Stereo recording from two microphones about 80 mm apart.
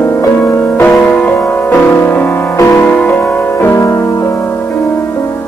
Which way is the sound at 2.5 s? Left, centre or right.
Left.